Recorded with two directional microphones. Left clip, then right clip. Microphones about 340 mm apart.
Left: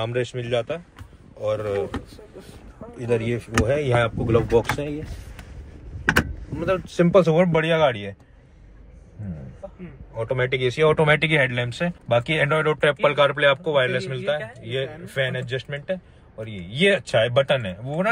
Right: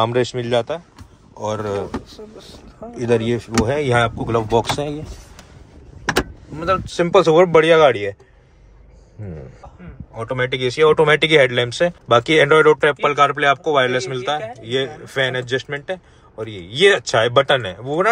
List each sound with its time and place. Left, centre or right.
0.0 s speech: centre
3.0 s speech: centre
6.6 s speech: centre
7.9 s speech: right
10.1 s speech: centre